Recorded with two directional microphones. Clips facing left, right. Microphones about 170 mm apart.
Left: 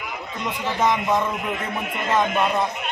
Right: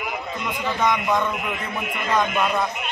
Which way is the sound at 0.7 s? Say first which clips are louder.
Left 1 dB; 25° left (ahead or behind).